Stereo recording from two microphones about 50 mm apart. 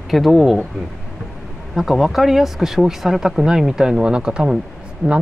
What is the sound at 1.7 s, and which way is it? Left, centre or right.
Speech, centre.